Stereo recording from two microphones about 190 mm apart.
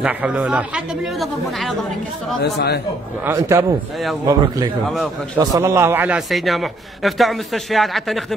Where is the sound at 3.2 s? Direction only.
15° right (ahead or behind).